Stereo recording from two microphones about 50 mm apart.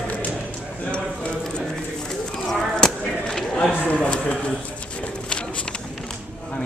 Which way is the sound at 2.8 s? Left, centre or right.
Centre.